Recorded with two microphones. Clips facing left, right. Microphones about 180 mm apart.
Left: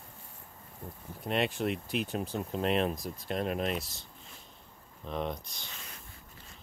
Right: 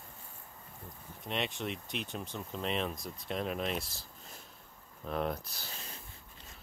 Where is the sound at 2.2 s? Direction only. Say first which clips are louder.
Left 6 dB; 35° left (ahead or behind).